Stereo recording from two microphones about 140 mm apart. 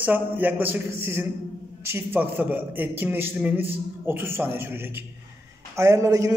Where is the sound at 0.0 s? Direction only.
10° right (ahead or behind).